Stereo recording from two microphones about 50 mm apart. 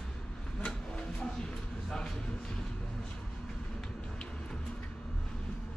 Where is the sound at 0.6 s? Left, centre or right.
Centre.